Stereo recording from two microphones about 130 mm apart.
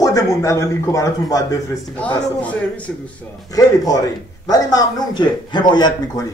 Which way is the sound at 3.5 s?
30° left (ahead or behind).